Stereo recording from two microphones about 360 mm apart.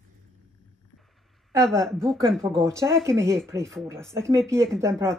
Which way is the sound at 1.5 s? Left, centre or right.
Centre.